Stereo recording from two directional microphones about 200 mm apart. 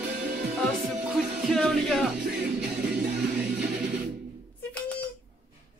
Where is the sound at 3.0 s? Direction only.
50° right (ahead or behind).